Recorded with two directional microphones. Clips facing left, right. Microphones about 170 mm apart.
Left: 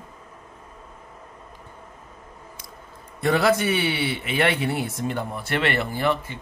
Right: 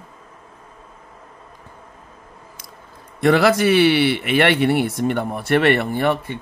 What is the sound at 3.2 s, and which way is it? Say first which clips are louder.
Speech: right 5 dB; 85° right.